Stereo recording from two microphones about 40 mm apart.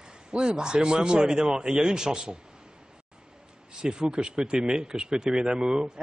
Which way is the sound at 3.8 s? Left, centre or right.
Right.